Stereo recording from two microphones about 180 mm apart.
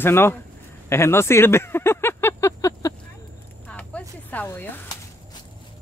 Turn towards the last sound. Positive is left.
turn(degrees=10)  # may be behind; listen again after turning